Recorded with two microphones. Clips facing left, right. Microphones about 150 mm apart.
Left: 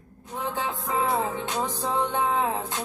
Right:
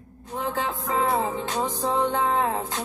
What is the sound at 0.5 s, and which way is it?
Music, centre (ahead or behind).